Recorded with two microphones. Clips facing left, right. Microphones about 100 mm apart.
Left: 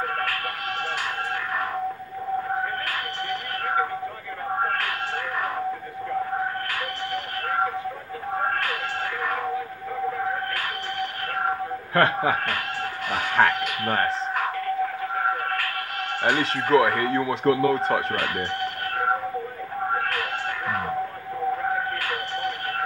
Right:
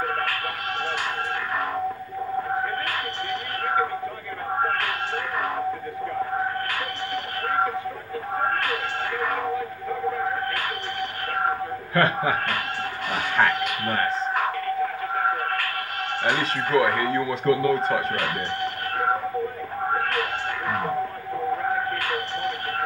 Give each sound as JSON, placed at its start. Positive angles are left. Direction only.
{"t": 11.9, "sound": "speech", "side_deg": 65}
{"t": 13.4, "sound": "speech", "side_deg": 50}
{"t": 16.7, "sound": "speech", "side_deg": 65}